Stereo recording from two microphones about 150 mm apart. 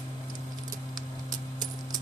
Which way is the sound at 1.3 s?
25° right (ahead or behind).